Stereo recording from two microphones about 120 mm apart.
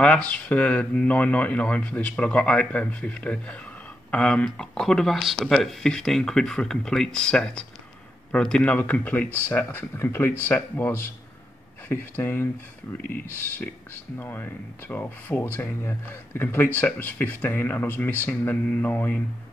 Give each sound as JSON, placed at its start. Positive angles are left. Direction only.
{"t": 0.0, "sound": "speech", "side_deg": 10}